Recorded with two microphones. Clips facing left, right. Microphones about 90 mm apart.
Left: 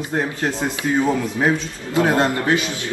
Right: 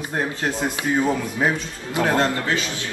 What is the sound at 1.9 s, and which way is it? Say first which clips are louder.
Speech: left 3 dB; 15° left (ahead or behind).